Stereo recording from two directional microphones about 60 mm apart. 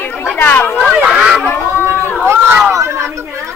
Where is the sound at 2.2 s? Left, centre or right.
Right.